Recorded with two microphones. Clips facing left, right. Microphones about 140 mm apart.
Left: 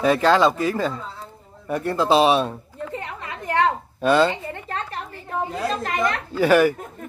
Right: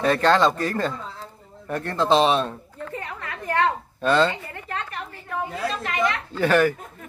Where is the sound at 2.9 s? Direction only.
20° left (ahead or behind).